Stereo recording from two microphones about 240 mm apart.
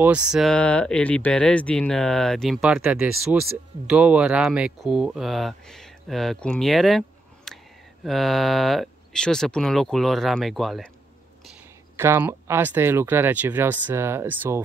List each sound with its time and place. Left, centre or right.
0.0 s speech: centre
12.0 s speech: centre